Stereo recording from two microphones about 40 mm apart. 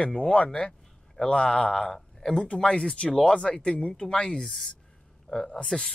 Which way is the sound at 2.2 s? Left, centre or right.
Centre.